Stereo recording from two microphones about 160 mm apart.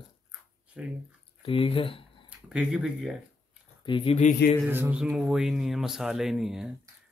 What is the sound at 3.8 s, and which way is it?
Speech, 35° left (ahead or behind).